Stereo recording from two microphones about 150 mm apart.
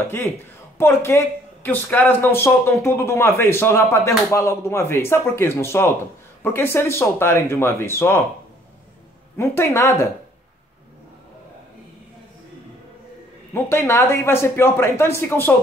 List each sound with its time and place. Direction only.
0.7 s speech: 15° left (ahead or behind)
9.4 s speech: 15° left (ahead or behind)
13.5 s speech: 15° left (ahead or behind)